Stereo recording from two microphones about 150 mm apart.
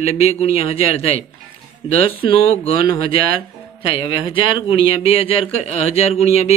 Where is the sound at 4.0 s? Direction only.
35° left (ahead or behind).